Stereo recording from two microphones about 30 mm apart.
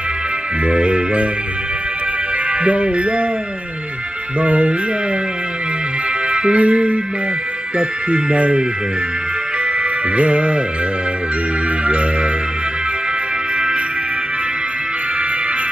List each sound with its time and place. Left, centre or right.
0.7 s jingle bell: right
2.6 s speech: right
4.4 s speech: right
6.3 s music: right
7.7 s speech: right
10.1 s music: right
11.8 s speech: right